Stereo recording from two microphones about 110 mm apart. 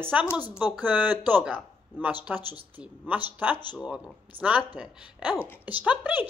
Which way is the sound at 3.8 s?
10° right (ahead or behind).